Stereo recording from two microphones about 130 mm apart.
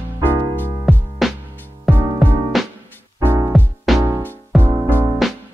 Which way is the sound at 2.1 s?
Centre (ahead or behind).